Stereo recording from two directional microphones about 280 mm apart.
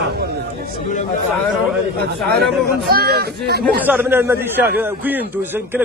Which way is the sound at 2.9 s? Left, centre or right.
Right.